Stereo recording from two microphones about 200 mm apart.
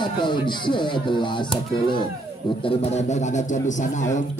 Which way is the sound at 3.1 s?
40° left (ahead or behind).